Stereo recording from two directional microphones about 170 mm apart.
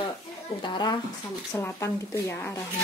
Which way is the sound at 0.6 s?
25° left (ahead or behind).